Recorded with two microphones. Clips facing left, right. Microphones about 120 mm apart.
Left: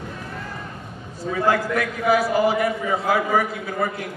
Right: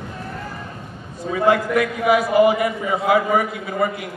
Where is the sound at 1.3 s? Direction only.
10° right (ahead or behind).